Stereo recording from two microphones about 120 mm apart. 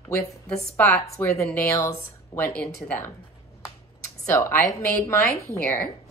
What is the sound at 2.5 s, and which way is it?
Speech, 10° left (ahead or behind).